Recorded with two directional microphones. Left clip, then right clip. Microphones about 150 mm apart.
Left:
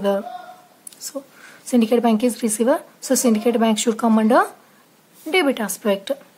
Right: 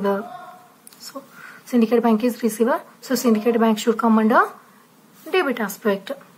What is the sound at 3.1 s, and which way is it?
A woman's voice, 25° left (ahead or behind).